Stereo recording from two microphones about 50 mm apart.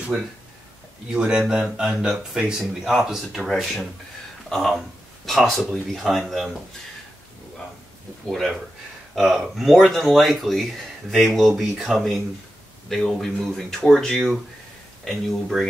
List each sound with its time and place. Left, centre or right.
1.1 s speech: centre
3.1 s speech: centre
8.3 s speech: centre